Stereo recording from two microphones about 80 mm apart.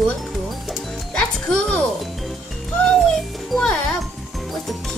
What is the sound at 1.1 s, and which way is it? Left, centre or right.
Speech, centre.